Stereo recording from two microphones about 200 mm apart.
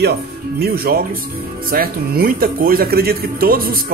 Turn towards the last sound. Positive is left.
turn(degrees=-50)  # may be behind; listen again after turning